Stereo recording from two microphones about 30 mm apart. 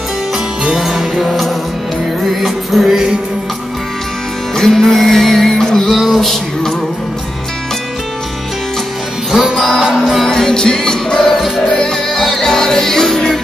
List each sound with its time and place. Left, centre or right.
0.7 s music: centre
4.6 s music: centre
5.9 s music: centre
9.9 s music: centre
10.2 s music: left
11.3 s music: centre
12.4 s music: centre